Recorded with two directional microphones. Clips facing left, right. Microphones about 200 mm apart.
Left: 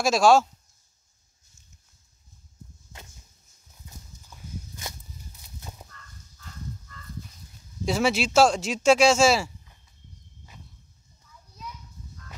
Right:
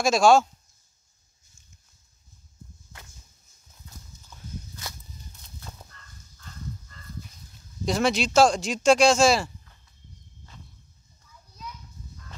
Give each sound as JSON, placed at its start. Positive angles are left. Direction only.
{"t": 0.0, "sound": "speech", "side_deg": 5}
{"t": 4.3, "sound": "walk", "side_deg": 20}
{"t": 5.4, "sound": "fowl", "side_deg": 15}
{"t": 7.8, "sound": "speech", "side_deg": 5}